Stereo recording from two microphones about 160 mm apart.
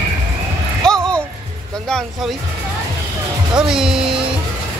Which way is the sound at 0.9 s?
5° left (ahead or behind).